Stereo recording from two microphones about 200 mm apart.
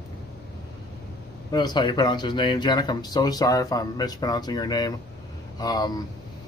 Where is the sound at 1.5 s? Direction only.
20° left (ahead or behind).